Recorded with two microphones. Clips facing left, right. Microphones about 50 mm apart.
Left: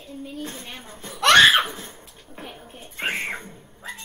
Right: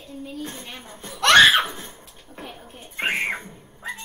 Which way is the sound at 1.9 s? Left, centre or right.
Centre.